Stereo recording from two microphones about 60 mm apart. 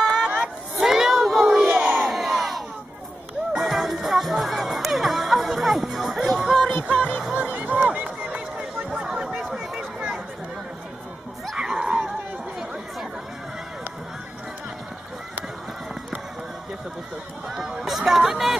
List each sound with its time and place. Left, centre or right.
0.0 s a sound: centre
0.4 s crowd: centre
1.7 s crowd: right
2.0 s crowd: centre
3.5 s music: centre
7.5 s music: right
7.9 s run: centre
11.5 s a sound: centre
17.5 s music: centre